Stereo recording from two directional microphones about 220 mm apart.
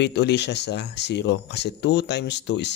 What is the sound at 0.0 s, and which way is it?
Speech, 50° left (ahead or behind).